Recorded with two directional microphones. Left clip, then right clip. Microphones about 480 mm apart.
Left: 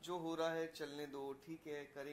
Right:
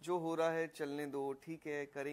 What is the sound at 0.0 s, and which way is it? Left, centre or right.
A man's voice, right.